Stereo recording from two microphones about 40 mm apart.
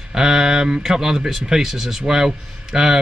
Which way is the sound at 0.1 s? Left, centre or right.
Centre.